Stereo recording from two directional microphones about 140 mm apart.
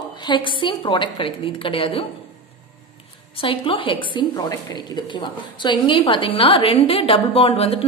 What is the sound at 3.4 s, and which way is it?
A woman's voice, 40° left (ahead or behind).